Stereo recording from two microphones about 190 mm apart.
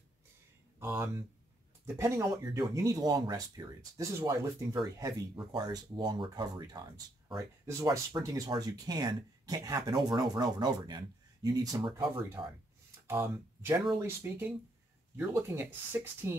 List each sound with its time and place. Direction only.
0.7 s a sound: 15° right (ahead or behind)
2.0 s speech: 15° right (ahead or behind)
13.0 s speech: 15° right (ahead or behind)